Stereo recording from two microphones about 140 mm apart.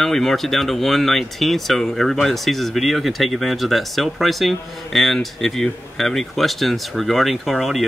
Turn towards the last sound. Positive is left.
turn(degrees=0)  # may be behind; listen again after turning